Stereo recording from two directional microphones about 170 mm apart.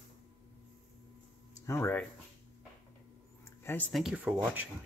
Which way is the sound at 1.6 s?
15° left (ahead or behind).